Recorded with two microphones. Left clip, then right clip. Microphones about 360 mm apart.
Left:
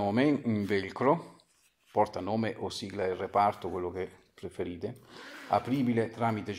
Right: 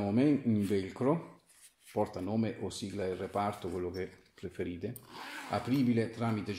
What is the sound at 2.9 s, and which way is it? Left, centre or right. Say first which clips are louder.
Speech: left 6 dB; left.